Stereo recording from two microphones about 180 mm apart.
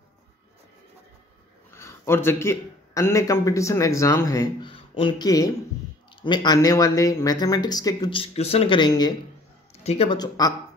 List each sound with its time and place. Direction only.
1.8 s a man's voice: 15° left (ahead or behind)